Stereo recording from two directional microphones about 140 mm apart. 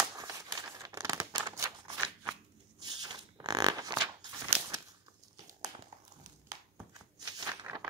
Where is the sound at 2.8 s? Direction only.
30° right (ahead or behind).